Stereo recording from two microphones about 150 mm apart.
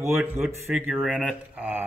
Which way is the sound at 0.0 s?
15° right (ahead or behind).